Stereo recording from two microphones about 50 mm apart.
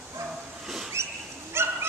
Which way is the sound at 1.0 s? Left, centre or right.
Right.